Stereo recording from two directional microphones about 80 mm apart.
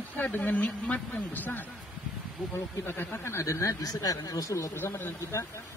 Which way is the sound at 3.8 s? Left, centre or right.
Left.